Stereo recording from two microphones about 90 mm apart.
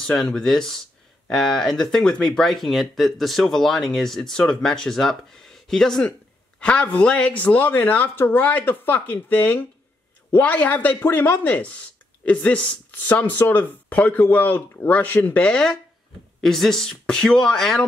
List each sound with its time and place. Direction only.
0.0 s speech: 5° left (ahead or behind)